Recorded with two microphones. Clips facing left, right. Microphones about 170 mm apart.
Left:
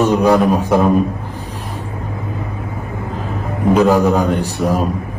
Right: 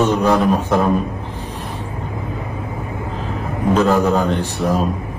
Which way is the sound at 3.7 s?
15° left (ahead or behind).